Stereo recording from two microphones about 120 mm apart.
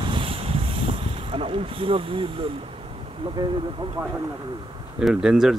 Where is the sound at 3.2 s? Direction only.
40° right (ahead or behind).